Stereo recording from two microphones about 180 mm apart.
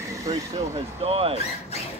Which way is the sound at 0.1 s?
20° right (ahead or behind).